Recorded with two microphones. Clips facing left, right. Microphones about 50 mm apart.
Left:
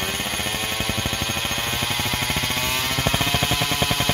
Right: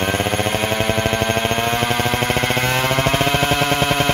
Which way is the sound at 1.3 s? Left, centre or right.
Right.